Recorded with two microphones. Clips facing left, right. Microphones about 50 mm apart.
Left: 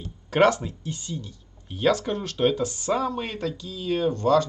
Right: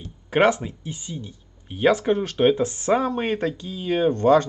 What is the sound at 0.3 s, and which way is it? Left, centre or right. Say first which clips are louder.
Speech: right 1 dB; centre.